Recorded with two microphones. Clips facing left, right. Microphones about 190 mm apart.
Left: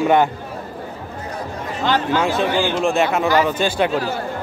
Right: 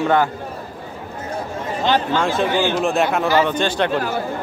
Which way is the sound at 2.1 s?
5° left (ahead or behind).